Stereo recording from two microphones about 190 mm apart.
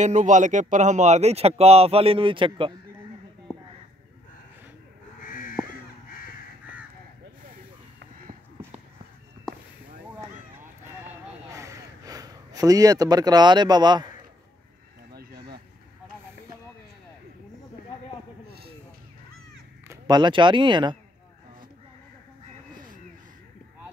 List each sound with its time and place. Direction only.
0.0 s speech: 40° right (ahead or behind)
5.2 s crow: 45° left (ahead or behind)
11.5 s a sound: 15° right (ahead or behind)
19.9 s speech: 20° right (ahead or behind)